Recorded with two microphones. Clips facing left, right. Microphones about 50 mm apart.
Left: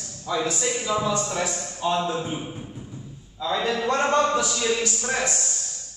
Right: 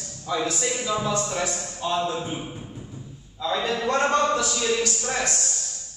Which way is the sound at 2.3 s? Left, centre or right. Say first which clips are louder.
Left 1 dB; centre.